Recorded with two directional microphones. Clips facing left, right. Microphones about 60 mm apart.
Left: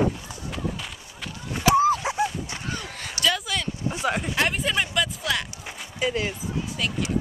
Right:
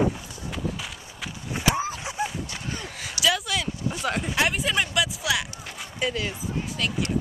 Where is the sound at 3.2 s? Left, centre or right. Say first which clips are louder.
Right 1 dB; centre.